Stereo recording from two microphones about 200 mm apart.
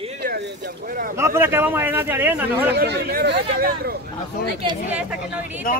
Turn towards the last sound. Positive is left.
turn(degrees=-10)  # may be behind; listen again after turning